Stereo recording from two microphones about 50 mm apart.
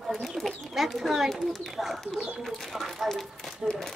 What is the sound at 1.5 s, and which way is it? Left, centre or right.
A child's voice, centre.